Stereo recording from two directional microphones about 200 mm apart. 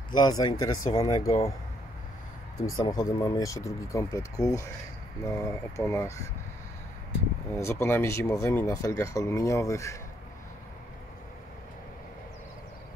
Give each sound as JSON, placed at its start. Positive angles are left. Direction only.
{"t": 0.1, "sound": "speech", "side_deg": 20}
{"t": 2.8, "sound": "speech", "side_deg": 15}
{"t": 7.5, "sound": "speech", "side_deg": 15}